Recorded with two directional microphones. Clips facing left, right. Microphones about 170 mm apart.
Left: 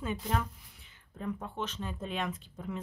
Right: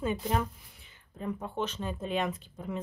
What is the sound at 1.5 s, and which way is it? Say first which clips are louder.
A woman's voice: right 4 dB; 5° right (ahead or behind).